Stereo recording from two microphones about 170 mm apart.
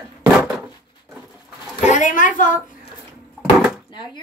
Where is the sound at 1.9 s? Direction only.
45° left (ahead or behind).